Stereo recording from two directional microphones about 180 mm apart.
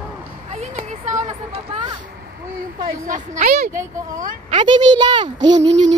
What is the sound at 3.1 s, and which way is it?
Speech, 50° right (ahead or behind).